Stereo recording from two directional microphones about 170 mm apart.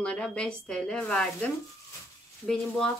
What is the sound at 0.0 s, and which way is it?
Speech, 5° left (ahead or behind).